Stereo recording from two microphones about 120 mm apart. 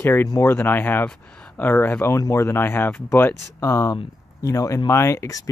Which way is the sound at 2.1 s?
25° left (ahead or behind).